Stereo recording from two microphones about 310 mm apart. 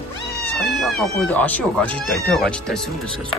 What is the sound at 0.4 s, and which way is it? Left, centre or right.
Speech, centre.